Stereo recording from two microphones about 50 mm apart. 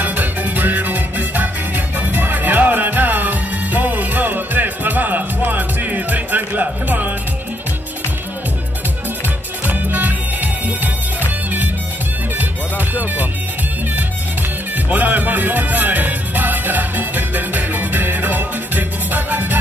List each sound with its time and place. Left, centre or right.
0.0 s music: right
9.7 s music: right
12.4 s music: right
14.9 s music: right